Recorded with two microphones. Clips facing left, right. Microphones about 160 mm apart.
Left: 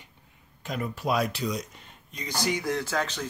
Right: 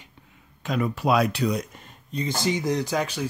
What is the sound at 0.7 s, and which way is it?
Speech, 90° right.